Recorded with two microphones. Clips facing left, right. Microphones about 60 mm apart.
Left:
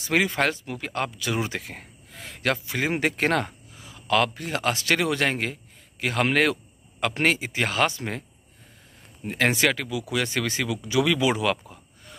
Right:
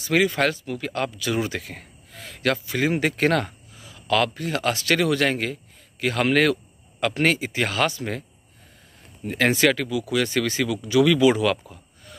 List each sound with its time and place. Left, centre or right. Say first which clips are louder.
0.0 s speech: right 2 dB; left
9.3 s speech: right 3 dB; centre